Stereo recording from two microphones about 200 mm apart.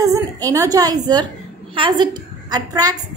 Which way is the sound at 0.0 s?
15° right (ahead or behind).